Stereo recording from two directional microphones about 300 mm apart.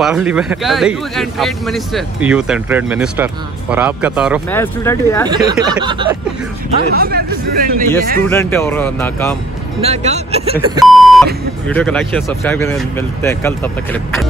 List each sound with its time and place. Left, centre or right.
0.0 s speech: centre
4.6 s speech: centre
5.3 s speech: centre
7.0 s speech: right
8.2 s speech: centre
9.8 s speech: right
10.9 s beep: centre
11.6 s speech: centre